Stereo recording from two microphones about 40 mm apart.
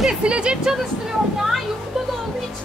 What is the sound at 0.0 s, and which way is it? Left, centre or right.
Speech, centre.